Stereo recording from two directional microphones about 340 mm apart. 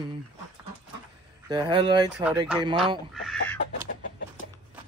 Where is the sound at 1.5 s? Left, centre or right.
Centre.